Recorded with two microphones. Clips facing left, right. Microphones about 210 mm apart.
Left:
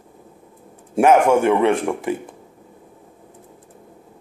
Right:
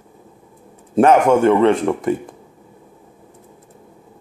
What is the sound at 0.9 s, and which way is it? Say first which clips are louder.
Speech: right 2 dB; 10° left (ahead or behind).